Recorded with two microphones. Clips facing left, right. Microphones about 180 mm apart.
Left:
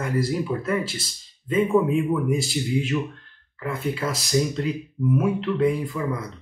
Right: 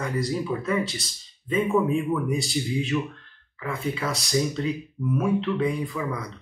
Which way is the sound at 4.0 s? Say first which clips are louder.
Left 2 dB; centre (ahead or behind).